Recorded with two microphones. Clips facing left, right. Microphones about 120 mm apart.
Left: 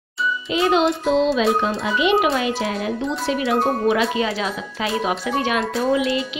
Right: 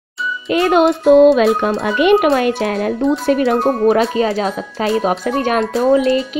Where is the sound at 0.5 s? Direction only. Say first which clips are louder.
Right 6 dB; 55° right (ahead or behind).